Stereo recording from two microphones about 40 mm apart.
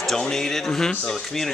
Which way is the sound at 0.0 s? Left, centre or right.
Centre.